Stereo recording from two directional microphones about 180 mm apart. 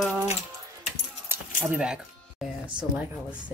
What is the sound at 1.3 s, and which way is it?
Keys jangling, 10° right (ahead or behind).